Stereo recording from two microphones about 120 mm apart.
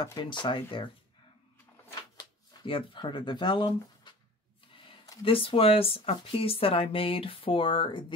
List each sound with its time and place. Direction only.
0.0 s speech: 35° left (ahead or behind)
2.1 s speech: 45° left (ahead or behind)
5.2 s speech: 50° left (ahead or behind)